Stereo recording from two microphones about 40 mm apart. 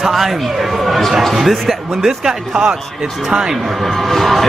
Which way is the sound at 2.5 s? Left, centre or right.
Right.